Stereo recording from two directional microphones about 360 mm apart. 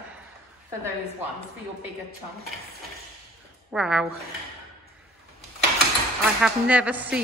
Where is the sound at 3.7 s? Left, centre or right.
Centre.